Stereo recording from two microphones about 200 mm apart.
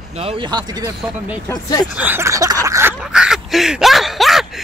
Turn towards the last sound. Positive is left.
turn(degrees=0)  # may be behind; listen again after turning